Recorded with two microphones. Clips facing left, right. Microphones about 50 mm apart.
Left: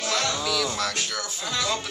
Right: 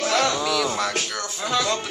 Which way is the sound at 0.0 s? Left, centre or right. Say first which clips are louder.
Right 5 dB; right.